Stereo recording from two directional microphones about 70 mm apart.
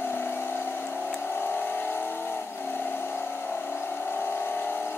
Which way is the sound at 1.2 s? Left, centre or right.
Left.